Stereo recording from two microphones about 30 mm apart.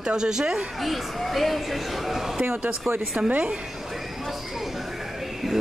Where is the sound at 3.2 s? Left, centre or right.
Right.